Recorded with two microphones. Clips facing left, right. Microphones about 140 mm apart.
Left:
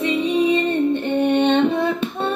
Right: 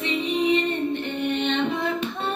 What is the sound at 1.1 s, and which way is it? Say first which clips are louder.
Music: left 8 dB; 60° left (ahead or behind).